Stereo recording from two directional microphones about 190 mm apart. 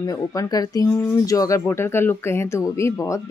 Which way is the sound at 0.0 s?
20° left (ahead or behind).